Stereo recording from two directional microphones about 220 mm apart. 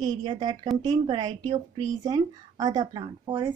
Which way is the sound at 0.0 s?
20° right (ahead or behind).